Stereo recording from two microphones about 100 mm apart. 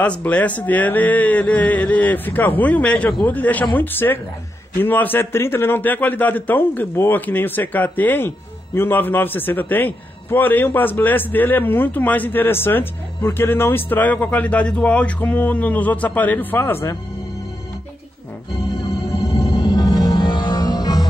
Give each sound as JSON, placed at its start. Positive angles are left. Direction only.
{"t": 0.2, "sound": "a man's voice", "side_deg": 15}
{"t": 19.1, "sound": "music", "side_deg": -5}
{"t": 19.5, "sound": "music", "side_deg": 45}